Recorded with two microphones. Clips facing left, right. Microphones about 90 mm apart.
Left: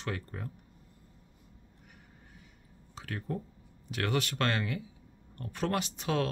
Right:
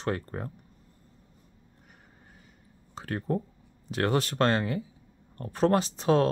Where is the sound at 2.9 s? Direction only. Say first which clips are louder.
Right 7 dB; 40° right (ahead or behind).